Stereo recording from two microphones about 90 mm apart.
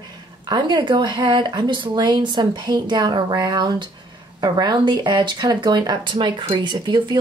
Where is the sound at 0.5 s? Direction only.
55° right (ahead or behind).